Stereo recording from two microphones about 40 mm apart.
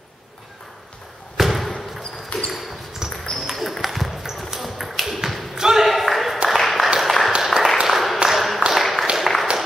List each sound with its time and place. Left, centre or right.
1.3 s thump: centre
2.3 s basketball bounce: left
3.0 s basketball bounce: centre
3.3 s basketball bounce: centre
3.8 s a sound: centre
5.9 s a sound: centre